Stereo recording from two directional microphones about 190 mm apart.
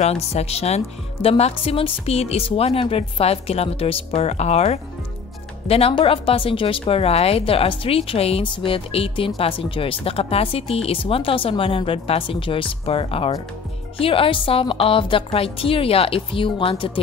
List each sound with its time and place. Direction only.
0.0 s speech: 35° left (ahead or behind)